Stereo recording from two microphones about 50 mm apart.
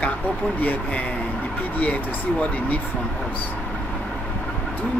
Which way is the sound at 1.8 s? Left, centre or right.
Left.